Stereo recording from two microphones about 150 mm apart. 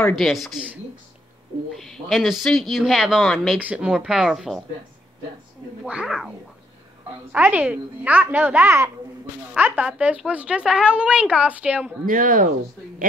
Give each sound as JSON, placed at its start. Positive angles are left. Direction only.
{"t": 0.1, "sound": "speech", "side_deg": 0}
{"t": 1.7, "sound": "speech", "side_deg": 0}
{"t": 5.9, "sound": "speech", "side_deg": -5}
{"t": 7.3, "sound": "speech", "side_deg": -10}
{"t": 12.1, "sound": "speech", "side_deg": -65}